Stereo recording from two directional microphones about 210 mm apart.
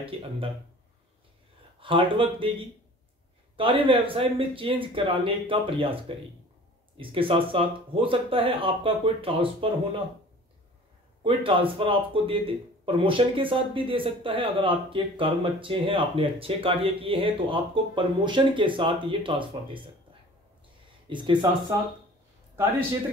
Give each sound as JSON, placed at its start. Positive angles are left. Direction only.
{"t": 0.1, "sound": "speech", "side_deg": -25}
{"t": 1.8, "sound": "speech", "side_deg": -25}
{"t": 3.5, "sound": "speech", "side_deg": -25}
{"t": 11.2, "sound": "speech", "side_deg": -25}
{"t": 21.1, "sound": "speech", "side_deg": -20}